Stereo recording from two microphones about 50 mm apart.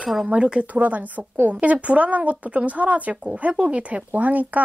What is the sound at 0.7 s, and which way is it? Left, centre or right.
A woman's voice, right.